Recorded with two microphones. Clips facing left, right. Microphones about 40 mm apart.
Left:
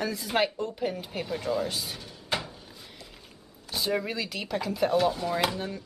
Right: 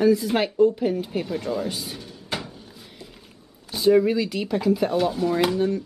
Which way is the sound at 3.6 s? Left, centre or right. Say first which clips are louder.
Right 11 dB; centre.